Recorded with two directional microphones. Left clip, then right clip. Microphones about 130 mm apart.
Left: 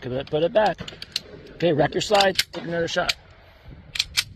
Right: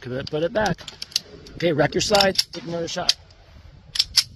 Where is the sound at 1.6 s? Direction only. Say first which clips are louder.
Even; 70° right (ahead or behind).